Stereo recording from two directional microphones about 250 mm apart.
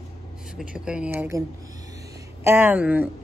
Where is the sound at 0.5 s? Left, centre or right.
Centre.